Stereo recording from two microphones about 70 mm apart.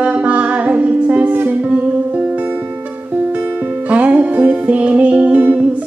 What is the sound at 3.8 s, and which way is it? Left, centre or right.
Music, centre.